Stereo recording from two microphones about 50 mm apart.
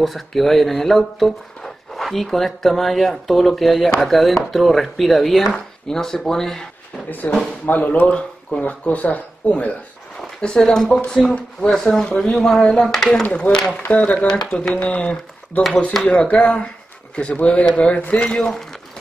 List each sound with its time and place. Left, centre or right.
0.0 s speech: centre
7.1 s speech: left
10.4 s speech: centre
11.8 s speech: left
12.4 s speech: centre
13.1 s speech: left
13.9 s speech: left